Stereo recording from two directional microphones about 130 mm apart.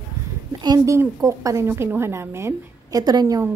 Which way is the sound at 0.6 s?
30° right (ahead or behind).